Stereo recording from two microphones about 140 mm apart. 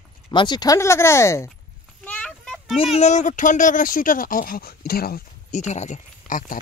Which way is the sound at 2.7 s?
50° left (ahead or behind).